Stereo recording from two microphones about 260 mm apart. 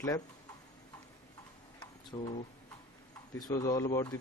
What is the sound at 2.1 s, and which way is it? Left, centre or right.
Speech, centre.